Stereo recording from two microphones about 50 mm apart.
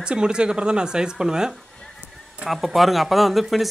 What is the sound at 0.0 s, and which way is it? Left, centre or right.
Speech, centre.